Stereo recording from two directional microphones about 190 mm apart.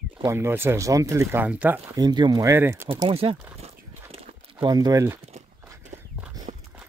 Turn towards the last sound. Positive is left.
turn(degrees=-35)  # may be behind; listen again after turning